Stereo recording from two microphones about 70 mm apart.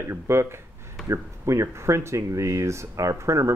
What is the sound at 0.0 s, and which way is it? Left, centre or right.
Speech, right.